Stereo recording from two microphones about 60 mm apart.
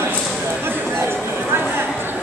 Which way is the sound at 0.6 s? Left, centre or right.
Right.